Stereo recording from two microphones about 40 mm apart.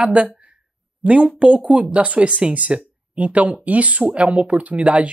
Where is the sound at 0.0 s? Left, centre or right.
Right.